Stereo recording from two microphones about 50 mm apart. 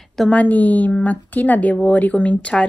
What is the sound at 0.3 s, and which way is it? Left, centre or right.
A woman's voice, left.